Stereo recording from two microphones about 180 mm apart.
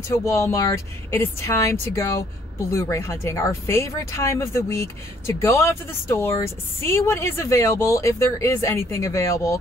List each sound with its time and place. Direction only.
0.1 s speech: 15° left (ahead or behind)